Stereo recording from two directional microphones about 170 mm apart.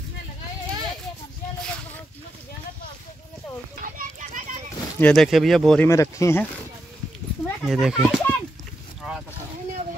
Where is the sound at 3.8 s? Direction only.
50° right (ahead or behind).